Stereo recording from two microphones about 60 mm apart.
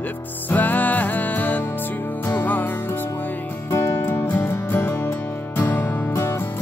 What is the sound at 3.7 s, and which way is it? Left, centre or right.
Music, left.